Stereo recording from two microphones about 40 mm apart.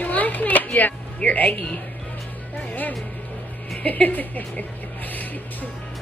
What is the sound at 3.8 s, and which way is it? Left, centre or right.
Speech, left.